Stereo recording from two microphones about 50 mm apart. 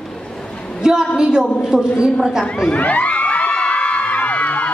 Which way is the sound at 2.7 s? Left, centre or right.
Left.